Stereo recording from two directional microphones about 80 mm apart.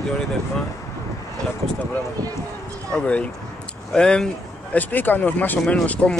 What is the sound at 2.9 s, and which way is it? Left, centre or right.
Speech, centre.